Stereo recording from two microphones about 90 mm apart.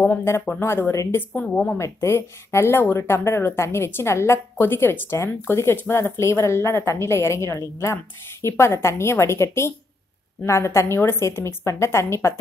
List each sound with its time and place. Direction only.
0.0 s speech: 20° left (ahead or behind)
1.4 s a woman's voice: 15° left (ahead or behind)
1.8 s a woman's voice: 30° left (ahead or behind)